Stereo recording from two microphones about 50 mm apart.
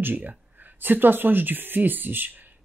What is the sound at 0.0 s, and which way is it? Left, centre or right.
Speech, right.